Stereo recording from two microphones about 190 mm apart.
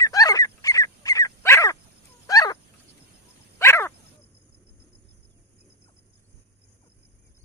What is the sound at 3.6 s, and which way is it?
Dog, 15° left (ahead or behind).